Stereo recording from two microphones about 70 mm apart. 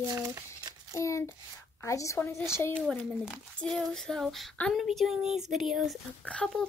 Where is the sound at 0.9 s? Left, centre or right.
Left.